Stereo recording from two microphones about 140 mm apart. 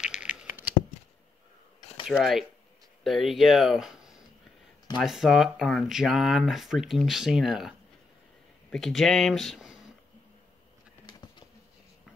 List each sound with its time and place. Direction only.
0.0 s a sound: 5° right (ahead or behind)
2.0 s speech: centre (ahead or behind)
11.1 s bee: 35° left (ahead or behind)